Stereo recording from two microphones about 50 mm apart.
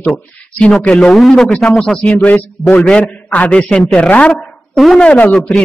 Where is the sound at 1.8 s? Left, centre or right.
Centre.